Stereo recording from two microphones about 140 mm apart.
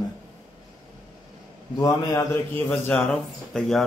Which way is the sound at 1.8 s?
20° left (ahead or behind).